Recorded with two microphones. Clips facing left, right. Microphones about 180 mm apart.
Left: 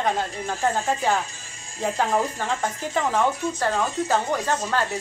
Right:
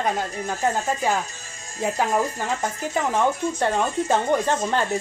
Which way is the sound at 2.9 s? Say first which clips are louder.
Right 1 dB; 20° right (ahead or behind).